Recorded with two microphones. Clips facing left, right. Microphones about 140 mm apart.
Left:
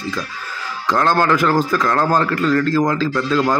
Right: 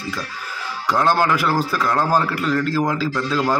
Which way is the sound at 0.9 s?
10° right (ahead or behind).